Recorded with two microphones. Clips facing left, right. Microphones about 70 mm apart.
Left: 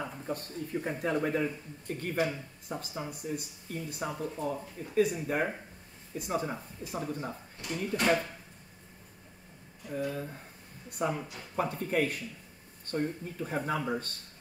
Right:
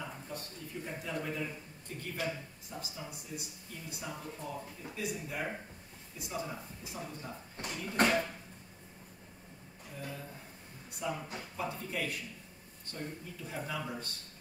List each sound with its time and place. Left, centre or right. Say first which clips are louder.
0.0 s speech: left 6 dB; left
8.0 s a sound: left 1 dB; right
9.8 s speech: left 10 dB; left